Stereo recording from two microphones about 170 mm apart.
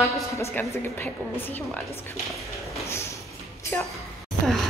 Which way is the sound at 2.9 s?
15° left (ahead or behind).